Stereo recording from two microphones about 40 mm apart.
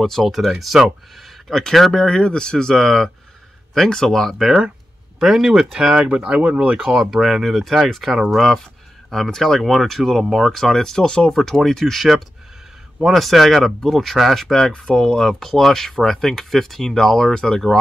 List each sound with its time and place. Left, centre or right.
0.2 s speech: centre
1.5 s speech: centre
2.7 s speech: centre
4.2 s speech: centre
6.0 s speech: right
6.9 s speech: centre
8.4 s speech: centre
13.7 s speech: centre
13.9 s speech: centre
14.7 s speech: left
15.2 s speech: centre